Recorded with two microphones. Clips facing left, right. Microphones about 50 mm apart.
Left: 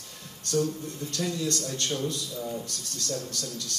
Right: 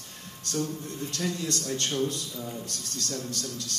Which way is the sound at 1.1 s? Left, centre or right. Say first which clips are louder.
Left 2 dB; right.